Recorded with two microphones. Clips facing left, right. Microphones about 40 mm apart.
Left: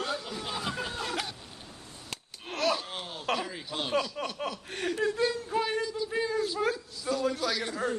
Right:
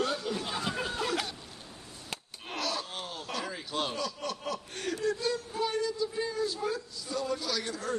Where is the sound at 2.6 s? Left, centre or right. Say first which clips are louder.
Left 6 dB; left.